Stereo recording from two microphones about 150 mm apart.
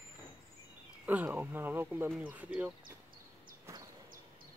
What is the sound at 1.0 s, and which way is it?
Speech, 10° right (ahead or behind).